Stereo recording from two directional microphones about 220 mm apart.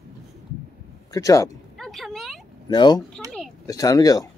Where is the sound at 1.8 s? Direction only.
Centre (ahead or behind).